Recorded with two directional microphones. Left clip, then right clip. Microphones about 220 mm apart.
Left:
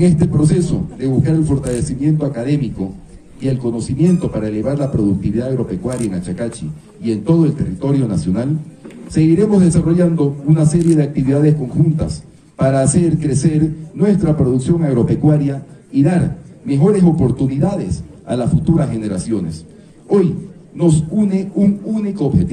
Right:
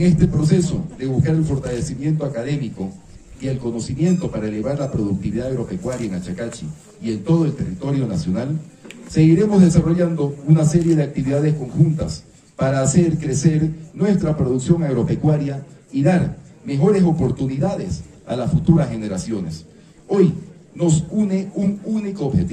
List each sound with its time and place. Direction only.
0.0 s a man's voice: 50° left (ahead or behind)